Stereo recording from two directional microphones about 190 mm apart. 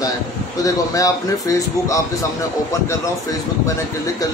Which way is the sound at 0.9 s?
15° left (ahead or behind).